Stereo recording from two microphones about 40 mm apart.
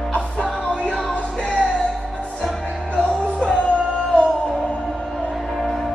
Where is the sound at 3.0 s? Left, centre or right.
Left.